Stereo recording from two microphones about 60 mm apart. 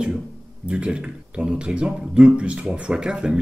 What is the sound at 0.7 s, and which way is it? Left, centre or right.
Speech, centre.